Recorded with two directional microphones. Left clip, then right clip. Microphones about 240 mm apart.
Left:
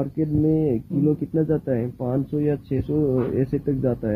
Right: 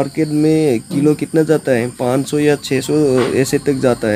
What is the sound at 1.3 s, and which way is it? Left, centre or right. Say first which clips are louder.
Speech: right 10 dB; right.